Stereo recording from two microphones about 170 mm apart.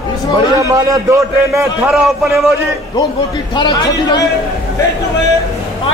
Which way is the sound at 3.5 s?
25° left (ahead or behind).